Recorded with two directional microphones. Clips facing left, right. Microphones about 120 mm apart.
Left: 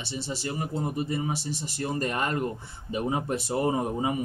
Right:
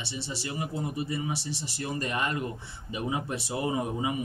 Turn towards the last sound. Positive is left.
turn(degrees=40)  # may be behind; listen again after turning